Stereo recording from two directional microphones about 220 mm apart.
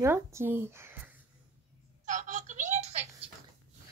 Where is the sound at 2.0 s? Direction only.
35° right (ahead or behind).